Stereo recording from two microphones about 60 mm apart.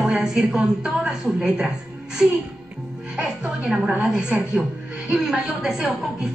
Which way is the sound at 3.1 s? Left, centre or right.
Centre.